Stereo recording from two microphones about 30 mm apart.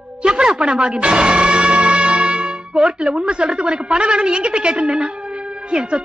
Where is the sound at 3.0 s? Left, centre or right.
Right.